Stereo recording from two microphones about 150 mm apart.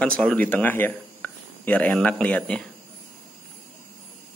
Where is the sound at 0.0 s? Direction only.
5° left (ahead or behind).